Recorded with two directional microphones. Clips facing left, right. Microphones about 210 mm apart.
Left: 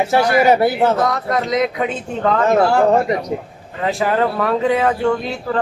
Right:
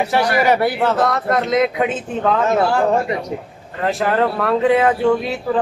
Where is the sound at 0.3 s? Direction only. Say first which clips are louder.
Left 3 dB; 25° left (ahead or behind).